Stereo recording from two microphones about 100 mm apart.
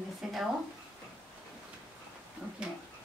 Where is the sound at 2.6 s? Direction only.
10° right (ahead or behind).